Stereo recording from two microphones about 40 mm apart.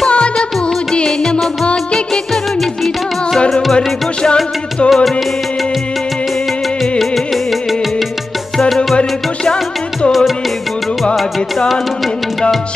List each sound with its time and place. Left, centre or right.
0.1 s music: left
3.3 s music: centre
4.8 s music: centre